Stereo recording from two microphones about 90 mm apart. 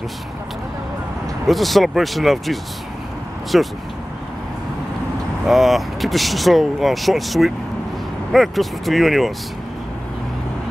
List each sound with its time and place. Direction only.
1.5 s speech: centre (ahead or behind)
5.5 s speech: centre (ahead or behind)